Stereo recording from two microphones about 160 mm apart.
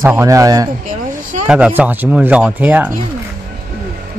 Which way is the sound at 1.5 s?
10° right (ahead or behind).